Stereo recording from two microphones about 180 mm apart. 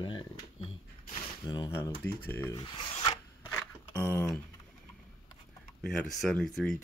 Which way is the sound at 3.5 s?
10° left (ahead or behind).